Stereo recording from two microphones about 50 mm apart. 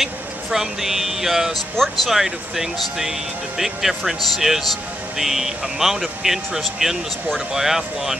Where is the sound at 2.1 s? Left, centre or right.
Centre.